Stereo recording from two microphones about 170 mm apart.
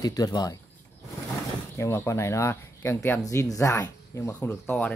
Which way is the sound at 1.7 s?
15° left (ahead or behind).